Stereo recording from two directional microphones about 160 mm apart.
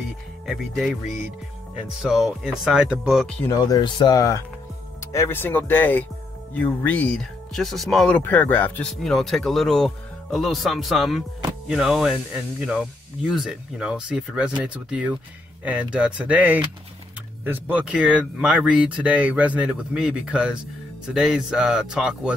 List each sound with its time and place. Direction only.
0.5 s speech: centre (ahead or behind)
3.4 s speech: 25° left (ahead or behind); by 22.3 s 5° right (ahead or behind)